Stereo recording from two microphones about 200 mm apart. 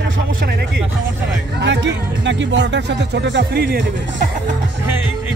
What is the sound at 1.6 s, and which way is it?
Speech, 65° right (ahead or behind).